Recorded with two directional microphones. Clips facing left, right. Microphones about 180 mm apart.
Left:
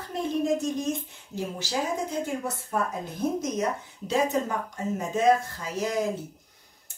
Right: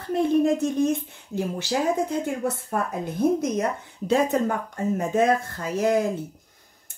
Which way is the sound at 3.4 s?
60° right (ahead or behind).